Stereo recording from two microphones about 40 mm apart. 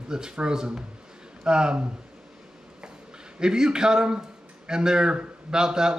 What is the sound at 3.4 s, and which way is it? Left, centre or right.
Speech, centre.